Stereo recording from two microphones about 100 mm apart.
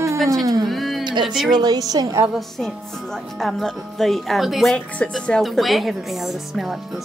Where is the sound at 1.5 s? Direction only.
45° right (ahead or behind).